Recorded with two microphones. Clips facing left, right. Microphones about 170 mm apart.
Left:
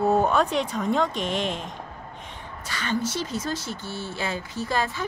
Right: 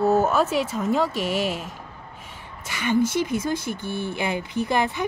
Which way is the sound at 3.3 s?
50° right (ahead or behind).